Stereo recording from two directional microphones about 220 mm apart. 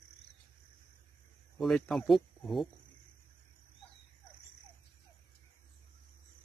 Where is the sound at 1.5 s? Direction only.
Centre (ahead or behind).